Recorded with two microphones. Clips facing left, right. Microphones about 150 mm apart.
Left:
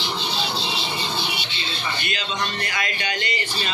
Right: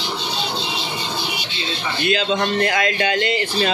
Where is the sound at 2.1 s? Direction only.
90° right.